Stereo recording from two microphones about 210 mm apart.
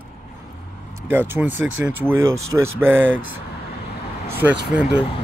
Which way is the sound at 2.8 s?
10° right (ahead or behind).